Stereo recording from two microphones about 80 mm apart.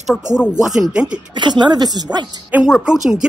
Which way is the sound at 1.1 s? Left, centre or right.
Right.